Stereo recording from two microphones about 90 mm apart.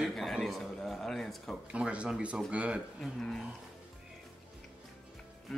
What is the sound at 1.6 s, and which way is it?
Speech, 15° right (ahead or behind).